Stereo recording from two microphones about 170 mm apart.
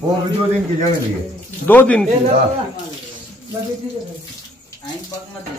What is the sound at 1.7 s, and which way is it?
Speech, 10° left (ahead or behind).